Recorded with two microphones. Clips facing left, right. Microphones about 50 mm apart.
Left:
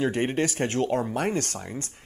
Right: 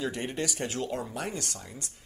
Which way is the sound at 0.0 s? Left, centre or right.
Left.